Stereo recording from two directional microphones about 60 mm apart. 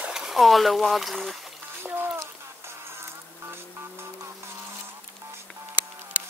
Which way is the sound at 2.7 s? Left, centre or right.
Right.